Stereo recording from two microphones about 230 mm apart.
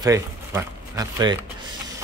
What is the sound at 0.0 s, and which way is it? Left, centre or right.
Speech, centre.